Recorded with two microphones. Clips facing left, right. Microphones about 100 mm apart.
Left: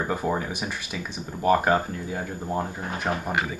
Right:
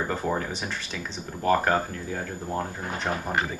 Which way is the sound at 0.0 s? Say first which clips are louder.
Left 1 dB; 10° left (ahead or behind).